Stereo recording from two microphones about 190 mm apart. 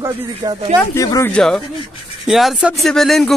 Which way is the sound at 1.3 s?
5° left (ahead or behind).